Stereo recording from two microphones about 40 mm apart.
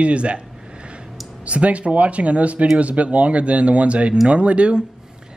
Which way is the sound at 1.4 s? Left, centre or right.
Right.